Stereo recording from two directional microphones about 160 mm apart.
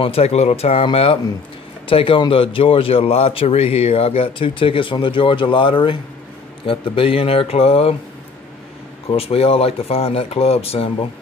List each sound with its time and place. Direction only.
0.0 s a man's voice: 40° left (ahead or behind)
9.1 s a man's voice: 35° left (ahead or behind)